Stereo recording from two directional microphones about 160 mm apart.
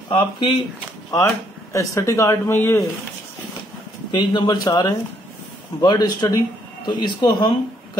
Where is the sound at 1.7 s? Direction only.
20° left (ahead or behind).